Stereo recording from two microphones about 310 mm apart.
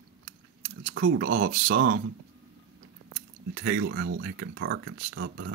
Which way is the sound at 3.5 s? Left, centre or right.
Right.